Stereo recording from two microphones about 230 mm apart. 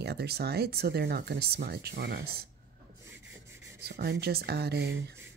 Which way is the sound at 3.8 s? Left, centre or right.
Right.